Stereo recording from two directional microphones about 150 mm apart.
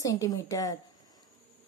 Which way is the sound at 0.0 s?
20° left (ahead or behind).